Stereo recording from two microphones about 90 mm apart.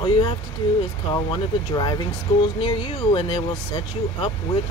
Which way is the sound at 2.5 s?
75° left (ahead or behind).